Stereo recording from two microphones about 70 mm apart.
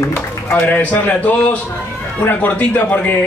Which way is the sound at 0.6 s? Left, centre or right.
Left.